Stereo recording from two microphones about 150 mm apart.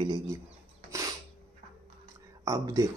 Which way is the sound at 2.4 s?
25° right (ahead or behind).